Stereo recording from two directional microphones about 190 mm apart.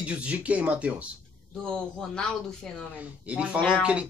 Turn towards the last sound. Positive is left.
turn(degrees=-5)  # may be behind; listen again after turning